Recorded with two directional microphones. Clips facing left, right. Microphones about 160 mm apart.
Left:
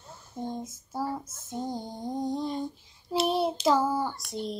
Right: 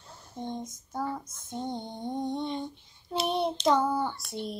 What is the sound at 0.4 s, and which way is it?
Speech, 5° left (ahead or behind).